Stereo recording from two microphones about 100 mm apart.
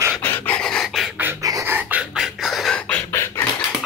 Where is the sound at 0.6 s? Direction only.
5° left (ahead or behind).